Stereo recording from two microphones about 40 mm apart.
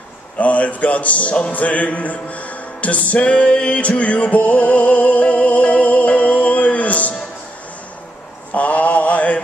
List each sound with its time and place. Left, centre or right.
0.4 s music: left
8.5 s mantra: left